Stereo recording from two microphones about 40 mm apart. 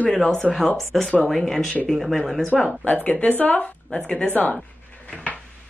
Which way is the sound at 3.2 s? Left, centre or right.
Left.